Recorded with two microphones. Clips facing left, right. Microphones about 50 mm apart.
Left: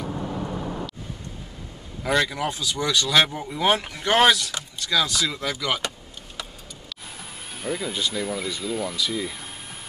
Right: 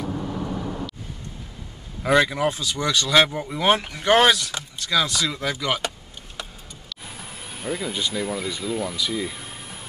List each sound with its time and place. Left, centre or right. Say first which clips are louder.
0.0 s vehicle: right 1 dB; centre
2.0 s speech: right 4 dB; centre
4.5 s speech: even; centre
5.1 s speech: right 1 dB; centre
7.2 s speech: right 1 dB; centre